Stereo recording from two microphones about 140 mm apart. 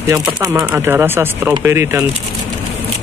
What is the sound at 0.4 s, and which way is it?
Speech, 25° right (ahead or behind).